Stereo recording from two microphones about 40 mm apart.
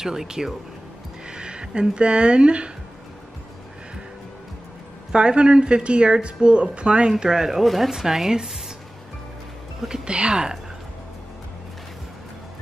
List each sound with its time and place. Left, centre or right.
0.0 s speech: centre
1.3 s speech: right
5.1 s speech: right
7.6 s speech: centre
7.9 s speech: centre
9.8 s speech: centre
10.0 s speech: right